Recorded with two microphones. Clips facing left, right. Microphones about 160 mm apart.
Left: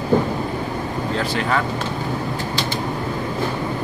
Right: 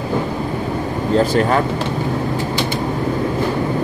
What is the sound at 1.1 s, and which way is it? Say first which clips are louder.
Speech: right 8 dB; 45° right (ahead or behind).